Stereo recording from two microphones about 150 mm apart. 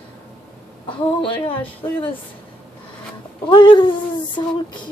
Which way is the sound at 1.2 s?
35° left (ahead or behind).